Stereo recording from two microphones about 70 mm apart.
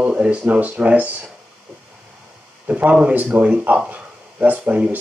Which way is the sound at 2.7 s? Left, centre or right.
Centre.